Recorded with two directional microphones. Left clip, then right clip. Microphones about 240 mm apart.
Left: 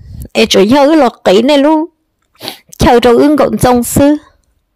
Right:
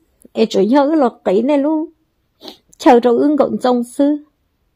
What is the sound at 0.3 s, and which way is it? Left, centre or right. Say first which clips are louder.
A woman's voice: left 6 dB; left.